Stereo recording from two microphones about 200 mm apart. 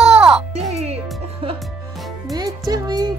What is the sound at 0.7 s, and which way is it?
Speech, 30° right (ahead or behind).